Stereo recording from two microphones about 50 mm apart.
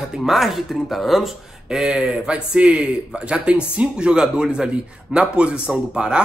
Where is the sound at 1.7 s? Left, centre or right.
Centre.